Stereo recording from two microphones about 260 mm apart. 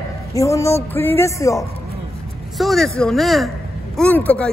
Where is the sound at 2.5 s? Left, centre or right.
Centre.